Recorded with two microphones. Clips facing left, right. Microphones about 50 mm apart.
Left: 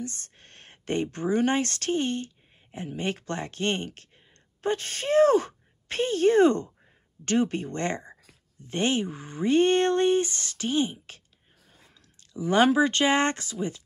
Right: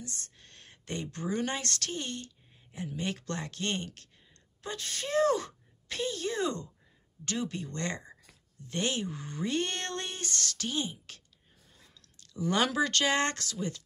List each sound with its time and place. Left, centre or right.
0.0 s speech: left
11.8 s a sound: left
12.5 s speech: left